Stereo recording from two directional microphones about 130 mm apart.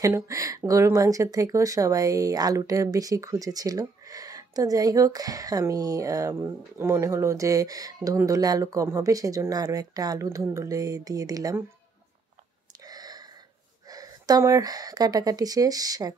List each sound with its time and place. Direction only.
0.0 s speech: 25° right (ahead or behind)
12.8 s gasp: 30° right (ahead or behind)
13.8 s speech: 30° right (ahead or behind)